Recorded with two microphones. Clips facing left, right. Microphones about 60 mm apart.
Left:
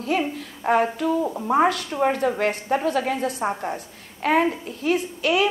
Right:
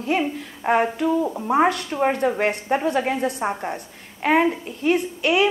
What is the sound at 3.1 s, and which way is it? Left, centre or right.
A woman's voice, centre.